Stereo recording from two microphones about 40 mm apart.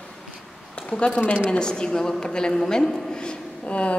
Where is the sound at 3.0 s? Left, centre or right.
Left.